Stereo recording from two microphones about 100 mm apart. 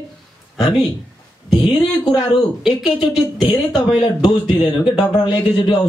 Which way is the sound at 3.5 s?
50° left (ahead or behind).